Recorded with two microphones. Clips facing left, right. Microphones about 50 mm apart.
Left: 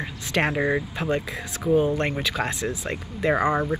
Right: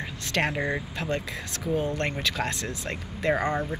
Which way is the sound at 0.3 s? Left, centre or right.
Centre.